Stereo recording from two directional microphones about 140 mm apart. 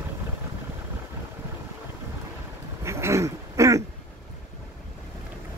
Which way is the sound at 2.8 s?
20° right (ahead or behind).